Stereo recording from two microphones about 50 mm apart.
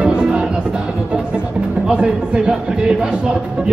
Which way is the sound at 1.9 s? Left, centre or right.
Centre.